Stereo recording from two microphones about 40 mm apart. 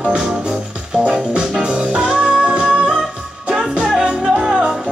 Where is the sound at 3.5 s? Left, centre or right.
Centre.